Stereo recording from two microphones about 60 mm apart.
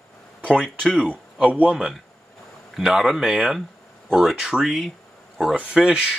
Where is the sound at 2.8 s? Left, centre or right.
Centre.